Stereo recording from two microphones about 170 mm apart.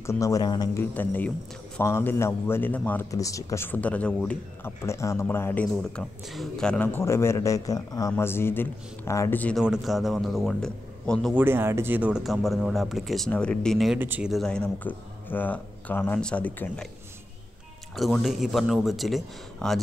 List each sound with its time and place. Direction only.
0.0 s speech: 15° left (ahead or behind)
0.9 s a man's voice: 10° left (ahead or behind)
9.6 s speech: centre (ahead or behind)
11.3 s speech: 15° right (ahead or behind)
13.9 s a man's voice: 10° right (ahead or behind); by 16.9 s 5° left (ahead or behind)
17.9 s speech: centre (ahead or behind)